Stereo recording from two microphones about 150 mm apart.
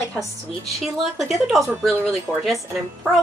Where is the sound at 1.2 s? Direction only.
Centre (ahead or behind).